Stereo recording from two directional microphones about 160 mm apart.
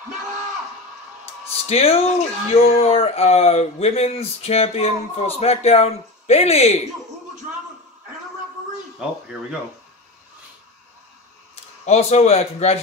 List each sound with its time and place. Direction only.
1.7 s a man's voice: 40° left (ahead or behind)
9.0 s speech: 5° right (ahead or behind)
11.8 s a man's voice: 40° left (ahead or behind)